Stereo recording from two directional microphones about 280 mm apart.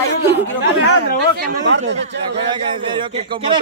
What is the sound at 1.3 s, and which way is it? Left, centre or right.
Speech, right.